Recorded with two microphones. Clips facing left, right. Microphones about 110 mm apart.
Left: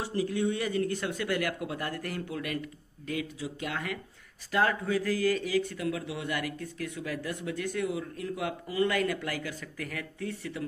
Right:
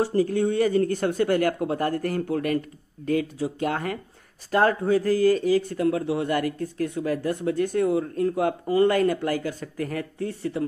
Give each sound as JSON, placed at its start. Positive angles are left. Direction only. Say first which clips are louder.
{"t": 0.0, "sound": "speech", "louder": "right 7 dB", "side_deg": -40}